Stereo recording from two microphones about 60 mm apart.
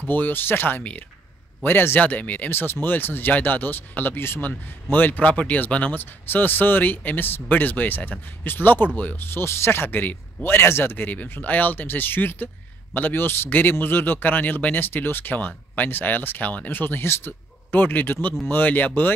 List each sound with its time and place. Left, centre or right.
0.1 s speech: left
2.5 s speech: left
9.3 s speech: left